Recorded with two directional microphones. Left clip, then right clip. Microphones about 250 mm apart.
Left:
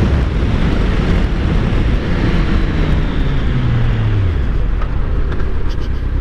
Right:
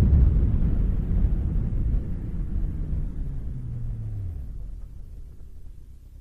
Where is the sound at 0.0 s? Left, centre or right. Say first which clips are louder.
Left 12 dB; centre.